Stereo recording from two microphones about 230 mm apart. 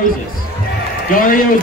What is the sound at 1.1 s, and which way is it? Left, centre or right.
Speech, left.